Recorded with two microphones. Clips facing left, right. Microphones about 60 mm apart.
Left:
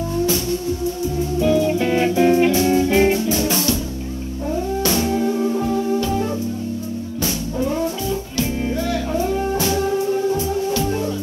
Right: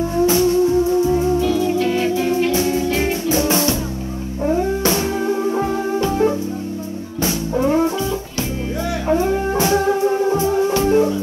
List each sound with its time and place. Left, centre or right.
0.1 s music: right
1.4 s music: left
3.3 s music: right
7.5 s music: right
9.1 s music: right